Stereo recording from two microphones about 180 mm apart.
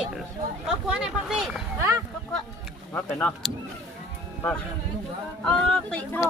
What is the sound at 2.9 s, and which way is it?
Speech, 10° left (ahead or behind).